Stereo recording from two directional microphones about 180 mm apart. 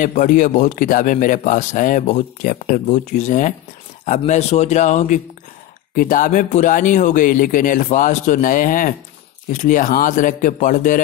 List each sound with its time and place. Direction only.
0.0 s speech: 45° left (ahead or behind)